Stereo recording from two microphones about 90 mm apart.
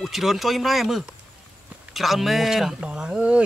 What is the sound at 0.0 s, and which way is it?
Speech, 5° right (ahead or behind).